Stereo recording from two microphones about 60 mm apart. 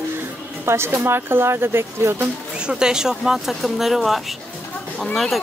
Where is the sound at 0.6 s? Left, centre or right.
Right.